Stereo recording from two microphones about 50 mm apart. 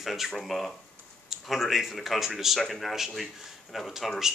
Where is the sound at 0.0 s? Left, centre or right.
Centre.